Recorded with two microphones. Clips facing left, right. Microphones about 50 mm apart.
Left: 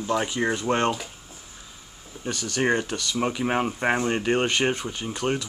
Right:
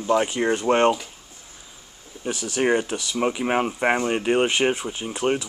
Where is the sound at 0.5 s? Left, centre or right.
Right.